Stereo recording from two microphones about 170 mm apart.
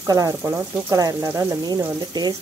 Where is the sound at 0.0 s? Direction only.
20° right (ahead or behind).